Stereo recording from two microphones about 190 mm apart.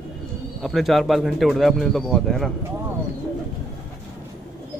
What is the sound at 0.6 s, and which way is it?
Speech, centre (ahead or behind).